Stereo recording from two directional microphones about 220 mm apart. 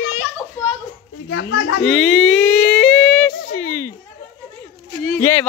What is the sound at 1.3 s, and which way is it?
Speech, 55° left (ahead or behind).